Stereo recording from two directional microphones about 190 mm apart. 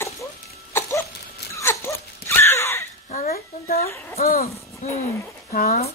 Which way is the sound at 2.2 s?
15° left (ahead or behind).